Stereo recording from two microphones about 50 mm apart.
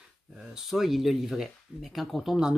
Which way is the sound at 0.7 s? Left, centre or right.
Centre.